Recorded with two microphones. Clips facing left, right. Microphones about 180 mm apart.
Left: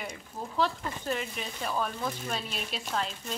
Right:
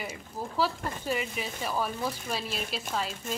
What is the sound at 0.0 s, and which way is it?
Speech, 5° right (ahead or behind).